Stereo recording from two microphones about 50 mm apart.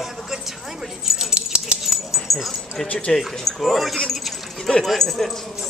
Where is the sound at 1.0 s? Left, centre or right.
Centre.